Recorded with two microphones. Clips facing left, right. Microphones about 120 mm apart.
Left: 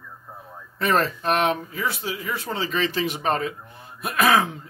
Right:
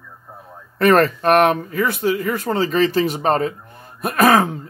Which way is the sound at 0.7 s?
60° right (ahead or behind).